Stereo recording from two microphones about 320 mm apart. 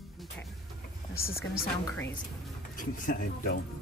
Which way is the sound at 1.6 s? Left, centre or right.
Centre.